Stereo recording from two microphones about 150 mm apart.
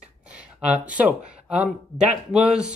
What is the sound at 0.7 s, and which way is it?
Speech, 10° right (ahead or behind).